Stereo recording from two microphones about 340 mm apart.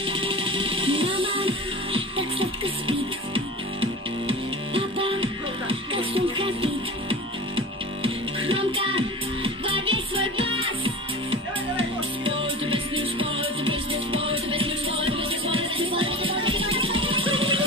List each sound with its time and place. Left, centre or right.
0.0 s music: centre
9.9 s music: right
10.3 s music: centre
12.6 s music: centre